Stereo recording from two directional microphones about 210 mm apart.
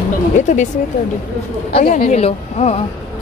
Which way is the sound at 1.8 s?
40° left (ahead or behind).